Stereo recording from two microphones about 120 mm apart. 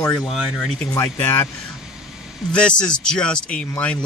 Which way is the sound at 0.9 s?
20° left (ahead or behind).